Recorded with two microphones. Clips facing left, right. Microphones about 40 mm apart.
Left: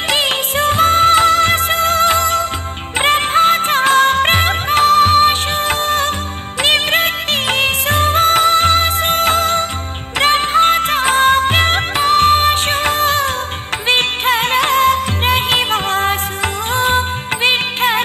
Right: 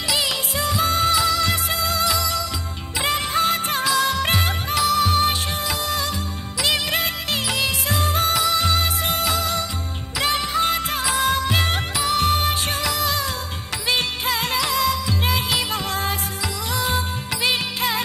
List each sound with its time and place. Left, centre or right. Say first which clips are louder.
0.1 s music: left 7 dB; left